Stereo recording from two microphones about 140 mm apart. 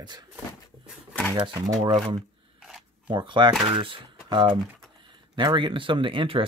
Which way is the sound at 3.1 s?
35° right (ahead or behind).